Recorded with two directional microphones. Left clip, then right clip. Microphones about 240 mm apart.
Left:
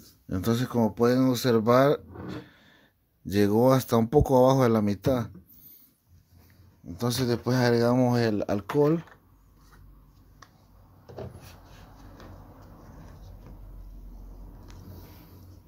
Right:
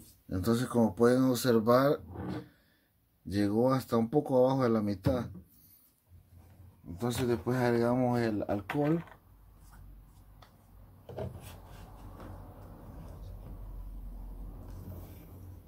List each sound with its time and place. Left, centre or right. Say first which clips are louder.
0.3 s speech: left 3 dB; left
2.2 s a sound: left 1 dB; left
3.3 s speech: left 7 dB; left
7.0 s speech: left 4 dB; left